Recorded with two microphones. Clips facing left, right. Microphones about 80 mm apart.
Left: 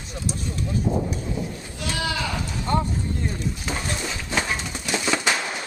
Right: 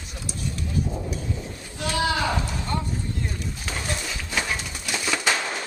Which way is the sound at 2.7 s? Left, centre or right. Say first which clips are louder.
Left 7 dB; left.